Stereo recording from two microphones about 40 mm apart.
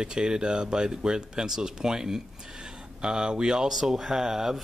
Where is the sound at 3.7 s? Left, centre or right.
Centre.